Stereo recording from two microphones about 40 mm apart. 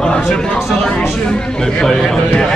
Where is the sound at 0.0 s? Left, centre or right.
Left.